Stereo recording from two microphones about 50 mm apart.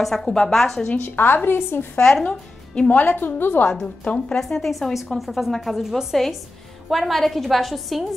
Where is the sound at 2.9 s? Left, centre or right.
Left.